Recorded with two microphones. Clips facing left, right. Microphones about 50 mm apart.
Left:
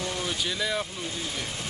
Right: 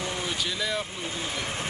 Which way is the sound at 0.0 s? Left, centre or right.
Centre.